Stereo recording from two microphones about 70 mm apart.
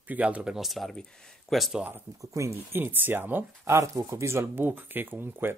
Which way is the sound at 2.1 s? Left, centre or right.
Right.